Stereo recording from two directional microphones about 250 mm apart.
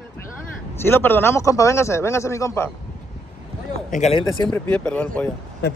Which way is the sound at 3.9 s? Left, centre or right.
Left.